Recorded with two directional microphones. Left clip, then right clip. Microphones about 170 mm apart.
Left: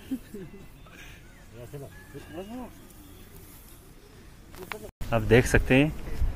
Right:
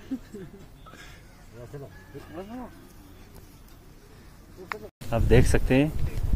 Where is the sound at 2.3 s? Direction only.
20° left (ahead or behind).